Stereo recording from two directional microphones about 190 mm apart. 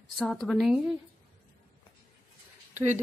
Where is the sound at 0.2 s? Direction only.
5° left (ahead or behind).